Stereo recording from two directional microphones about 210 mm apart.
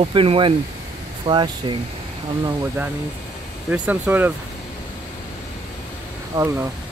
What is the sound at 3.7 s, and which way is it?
Speech, 10° right (ahead or behind).